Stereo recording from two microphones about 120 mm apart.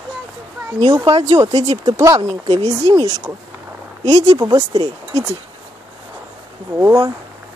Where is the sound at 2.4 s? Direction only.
60° right (ahead or behind).